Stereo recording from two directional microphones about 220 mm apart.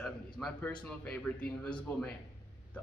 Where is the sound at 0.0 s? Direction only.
5° left (ahead or behind).